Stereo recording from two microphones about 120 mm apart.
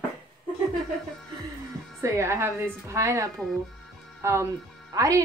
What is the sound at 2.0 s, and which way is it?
A woman's voice, 25° right (ahead or behind).